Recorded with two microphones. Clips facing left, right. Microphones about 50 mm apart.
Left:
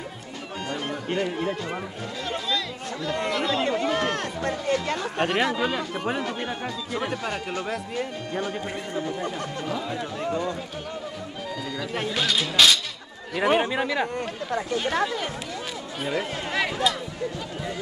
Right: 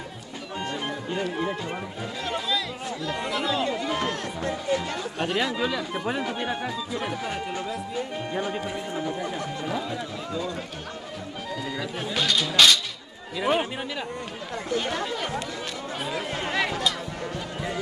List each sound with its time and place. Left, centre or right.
1.1 s speech: left
2.2 s speech: centre
3.6 s speech: left
6.2 s speech: centre
6.9 s speech: left
8.3 s speech: centre
12.2 s speech: centre
13.4 s speech: left
13.7 s speech: left
16.0 s speech: centre